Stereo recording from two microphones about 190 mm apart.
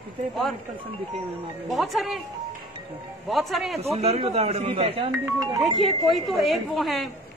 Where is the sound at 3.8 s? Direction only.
35° right (ahead or behind).